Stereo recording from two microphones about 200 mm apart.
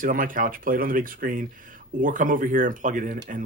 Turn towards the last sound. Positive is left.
turn(degrees=-40)  # may be behind; listen again after turning